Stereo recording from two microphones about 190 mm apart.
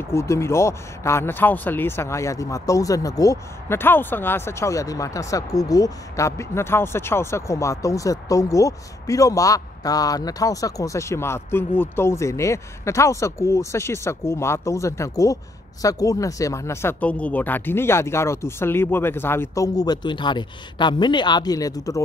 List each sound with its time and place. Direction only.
0.1 s speech: 15° left (ahead or behind)